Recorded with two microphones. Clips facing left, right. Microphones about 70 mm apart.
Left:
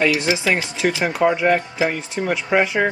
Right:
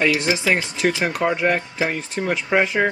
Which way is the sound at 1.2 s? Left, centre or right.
Centre.